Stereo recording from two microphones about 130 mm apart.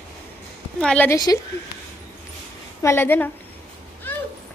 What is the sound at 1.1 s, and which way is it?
Speech, 25° left (ahead or behind).